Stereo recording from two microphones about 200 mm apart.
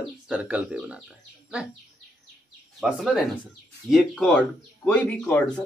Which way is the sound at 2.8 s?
Centre (ahead or behind).